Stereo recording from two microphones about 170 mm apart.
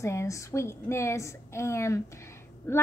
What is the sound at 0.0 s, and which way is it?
A woman's voice, 15° left (ahead or behind).